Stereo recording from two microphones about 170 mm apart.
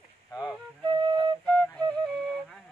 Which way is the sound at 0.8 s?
25° right (ahead or behind).